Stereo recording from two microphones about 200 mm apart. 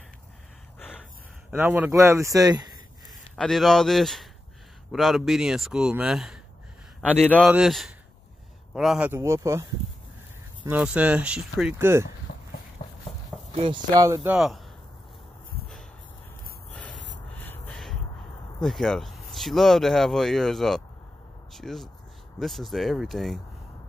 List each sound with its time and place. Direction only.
0.7 s gasp: 10° left (ahead or behind)
1.5 s speech: 10° right (ahead or behind)
3.3 s speech: centre (ahead or behind)
7.1 s a man's voice: 10° left (ahead or behind)
7.4 s speech: 5° right (ahead or behind)
10.7 s speech: 5° right (ahead or behind)
12.3 s a sound: 55° left (ahead or behind)
12.8 s a sound: 40° left (ahead or behind)
13.6 s speech: 25° right (ahead or behind)
14.3 s speech: centre (ahead or behind)
17.4 s a sound: 5° left (ahead or behind)
18.6 s speech: centre (ahead or behind)